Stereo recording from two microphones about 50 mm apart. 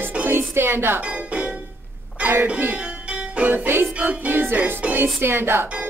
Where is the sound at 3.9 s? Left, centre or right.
Right.